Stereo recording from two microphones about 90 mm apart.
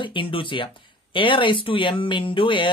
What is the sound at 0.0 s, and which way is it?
Speech, 70° left (ahead or behind).